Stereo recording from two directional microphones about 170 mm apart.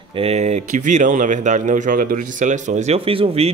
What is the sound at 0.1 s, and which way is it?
Speech, 35° right (ahead or behind).